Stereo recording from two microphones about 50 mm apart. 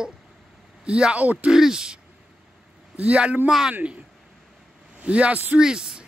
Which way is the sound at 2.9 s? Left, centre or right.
Right.